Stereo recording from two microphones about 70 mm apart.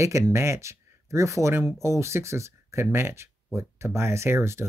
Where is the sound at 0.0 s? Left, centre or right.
Right.